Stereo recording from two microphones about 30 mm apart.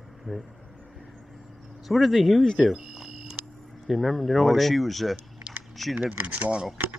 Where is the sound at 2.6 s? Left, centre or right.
Centre.